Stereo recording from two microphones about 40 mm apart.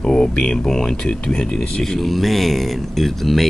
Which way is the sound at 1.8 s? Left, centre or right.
Centre.